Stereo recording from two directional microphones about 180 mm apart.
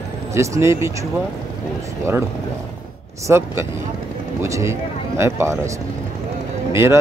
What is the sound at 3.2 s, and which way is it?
Speech, 15° right (ahead or behind).